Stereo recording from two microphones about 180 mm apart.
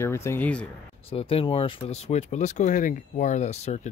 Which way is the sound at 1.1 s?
30° left (ahead or behind).